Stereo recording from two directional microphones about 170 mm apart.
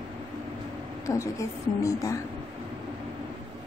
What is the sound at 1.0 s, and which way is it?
A woman's voice, 20° left (ahead or behind).